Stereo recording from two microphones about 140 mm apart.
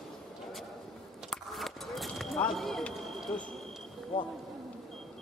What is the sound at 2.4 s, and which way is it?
Speech, centre (ahead or behind).